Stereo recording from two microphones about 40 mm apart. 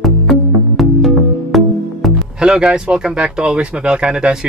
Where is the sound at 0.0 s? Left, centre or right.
Centre.